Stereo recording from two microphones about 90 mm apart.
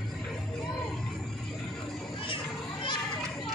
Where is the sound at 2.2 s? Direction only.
70° left (ahead or behind).